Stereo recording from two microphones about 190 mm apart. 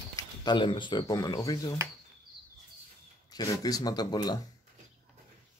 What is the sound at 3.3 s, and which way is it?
Speech, 20° left (ahead or behind).